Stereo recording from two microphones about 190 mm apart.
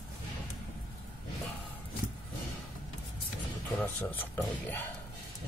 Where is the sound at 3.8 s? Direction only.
10° left (ahead or behind).